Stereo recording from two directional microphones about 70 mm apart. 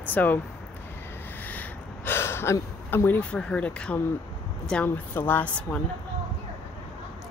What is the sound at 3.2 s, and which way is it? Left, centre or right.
Speech, centre.